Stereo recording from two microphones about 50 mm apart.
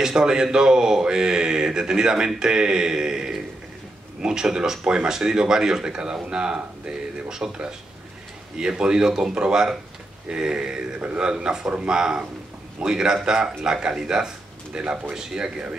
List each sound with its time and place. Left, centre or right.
0.0 s speech: centre